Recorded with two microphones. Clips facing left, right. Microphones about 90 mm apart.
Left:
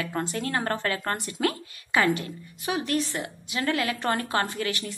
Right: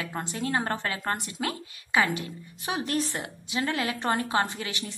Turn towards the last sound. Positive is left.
turn(degrees=-20)  # may be behind; listen again after turning